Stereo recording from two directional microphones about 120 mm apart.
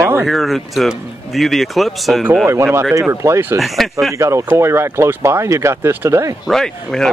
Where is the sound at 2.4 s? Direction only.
20° right (ahead or behind).